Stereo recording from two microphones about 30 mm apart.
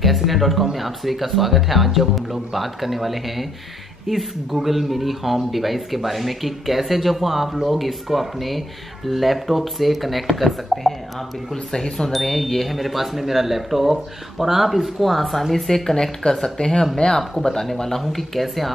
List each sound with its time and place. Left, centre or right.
0.0 s speech: centre
11.5 s speech: left
12.3 s speech: centre
12.7 s speech: centre
16.5 s speech: left
17.4 s speech: centre